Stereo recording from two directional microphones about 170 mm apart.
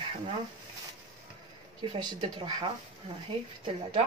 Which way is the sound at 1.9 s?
30° right (ahead or behind).